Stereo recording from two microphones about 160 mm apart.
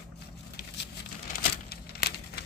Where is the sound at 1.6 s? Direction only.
90° left.